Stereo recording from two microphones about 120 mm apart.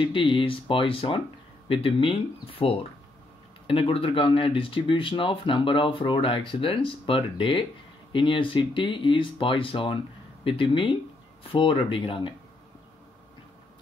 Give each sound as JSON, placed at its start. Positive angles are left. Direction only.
{"t": 0.0, "sound": "speech", "side_deg": 45}